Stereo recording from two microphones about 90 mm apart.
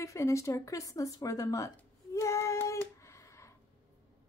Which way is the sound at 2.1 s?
30° left (ahead or behind).